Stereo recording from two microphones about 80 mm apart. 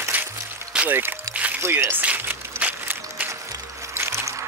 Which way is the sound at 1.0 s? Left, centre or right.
Right.